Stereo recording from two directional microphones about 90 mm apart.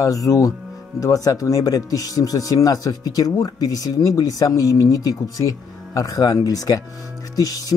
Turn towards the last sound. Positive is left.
turn(degrees=45)  # may be behind; listen again after turning